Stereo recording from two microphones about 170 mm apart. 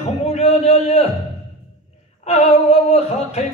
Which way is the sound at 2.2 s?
40° left (ahead or behind).